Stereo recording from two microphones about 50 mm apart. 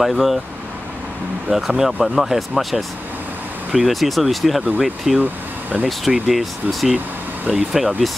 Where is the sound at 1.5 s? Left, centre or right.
Centre.